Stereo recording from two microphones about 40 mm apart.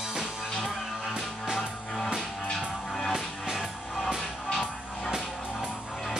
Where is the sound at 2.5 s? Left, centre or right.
Centre.